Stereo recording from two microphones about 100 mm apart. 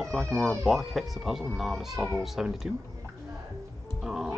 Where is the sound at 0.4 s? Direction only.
Centre (ahead or behind).